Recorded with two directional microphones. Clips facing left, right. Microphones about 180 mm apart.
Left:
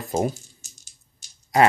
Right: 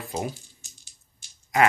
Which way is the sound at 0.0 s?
45° left (ahead or behind).